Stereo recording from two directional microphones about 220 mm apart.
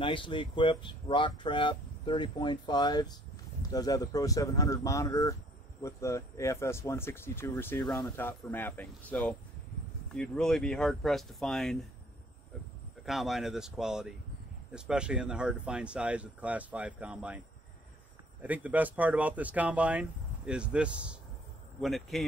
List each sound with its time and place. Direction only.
0.0 s speech: 20° left (ahead or behind); by 11.8 s centre (ahead or behind)
13.0 s speech: centre (ahead or behind)
18.4 s speech: 5° right (ahead or behind)